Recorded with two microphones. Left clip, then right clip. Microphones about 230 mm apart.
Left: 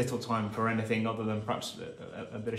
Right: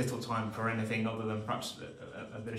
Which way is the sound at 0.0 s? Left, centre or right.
Left.